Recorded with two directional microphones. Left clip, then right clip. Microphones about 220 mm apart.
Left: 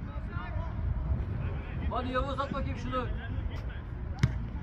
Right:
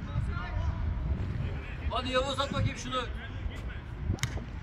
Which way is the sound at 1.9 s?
45° right (ahead or behind).